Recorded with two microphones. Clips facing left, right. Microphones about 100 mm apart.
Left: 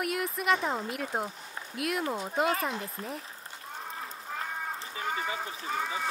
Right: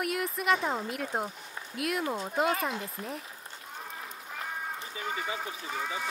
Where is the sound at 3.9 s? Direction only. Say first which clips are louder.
Left 3 dB; 35° left (ahead or behind).